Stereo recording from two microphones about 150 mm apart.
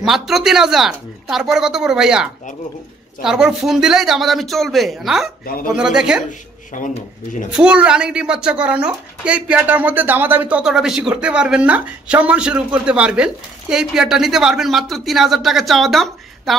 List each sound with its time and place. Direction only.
0.0 s speech: centre (ahead or behind)
5.4 s speech: 80° left
5.8 s speech: 5° right (ahead or behind)
6.7 s speech: 60° left (ahead or behind)
7.5 s speech: 5° right (ahead or behind)